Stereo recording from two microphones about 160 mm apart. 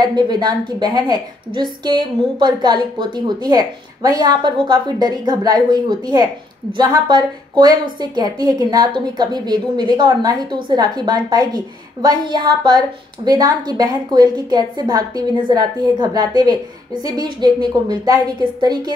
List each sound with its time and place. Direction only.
0.0 s a woman's voice: 25° right (ahead or behind)